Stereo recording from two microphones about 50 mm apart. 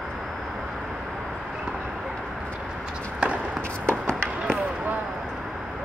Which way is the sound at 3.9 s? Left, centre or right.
Centre.